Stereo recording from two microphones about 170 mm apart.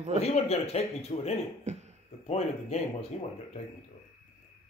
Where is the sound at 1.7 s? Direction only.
45° right (ahead or behind).